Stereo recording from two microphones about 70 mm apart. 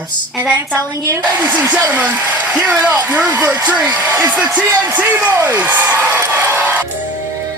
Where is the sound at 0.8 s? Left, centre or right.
Right.